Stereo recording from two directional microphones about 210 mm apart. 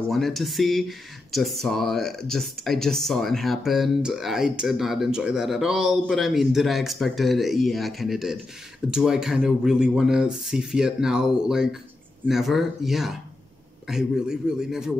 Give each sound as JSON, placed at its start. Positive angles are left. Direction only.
{"t": 0.1, "sound": "speech", "side_deg": 0}